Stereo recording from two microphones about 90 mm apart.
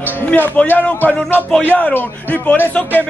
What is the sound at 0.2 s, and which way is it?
A man's voice, 15° left (ahead or behind).